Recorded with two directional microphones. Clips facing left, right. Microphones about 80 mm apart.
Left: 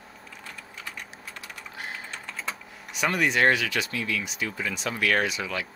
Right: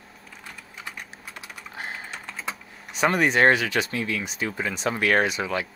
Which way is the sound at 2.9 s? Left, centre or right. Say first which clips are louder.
Right 4 dB; right.